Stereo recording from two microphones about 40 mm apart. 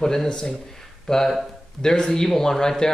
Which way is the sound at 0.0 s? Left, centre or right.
Centre.